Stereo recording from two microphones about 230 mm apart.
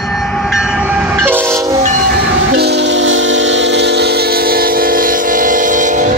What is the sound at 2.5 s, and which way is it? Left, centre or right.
Train, right.